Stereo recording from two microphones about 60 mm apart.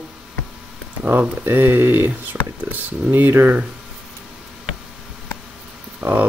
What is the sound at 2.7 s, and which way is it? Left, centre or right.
Speech, right.